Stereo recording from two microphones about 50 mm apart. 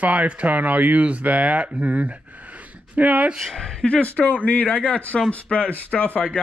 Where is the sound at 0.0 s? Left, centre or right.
Right.